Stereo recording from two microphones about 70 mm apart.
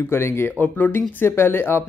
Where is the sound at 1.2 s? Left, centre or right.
Left.